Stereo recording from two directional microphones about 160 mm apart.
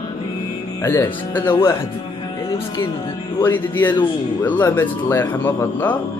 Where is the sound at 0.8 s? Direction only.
20° left (ahead or behind).